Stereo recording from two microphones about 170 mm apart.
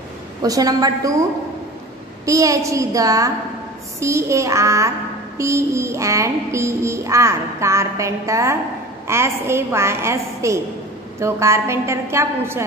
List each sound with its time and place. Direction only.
0.4 s a child's voice: 20° right (ahead or behind)
2.2 s a child's voice: 20° right (ahead or behind)
4.0 s music: 15° right (ahead or behind)